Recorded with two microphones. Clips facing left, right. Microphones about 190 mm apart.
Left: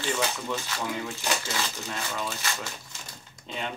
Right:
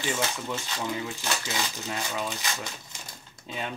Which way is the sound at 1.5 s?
15° right (ahead or behind).